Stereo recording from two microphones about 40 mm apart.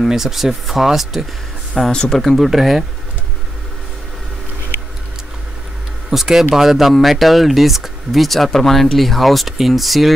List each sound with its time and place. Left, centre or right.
0.0 s speech: centre
1.9 s speech: centre
2.5 s speech: centre
6.0 s speech: centre